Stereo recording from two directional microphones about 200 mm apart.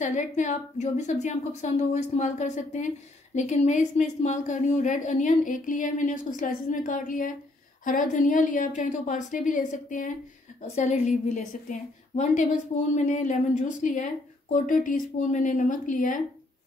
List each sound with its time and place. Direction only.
0.0 s a woman's voice: 35° left (ahead or behind)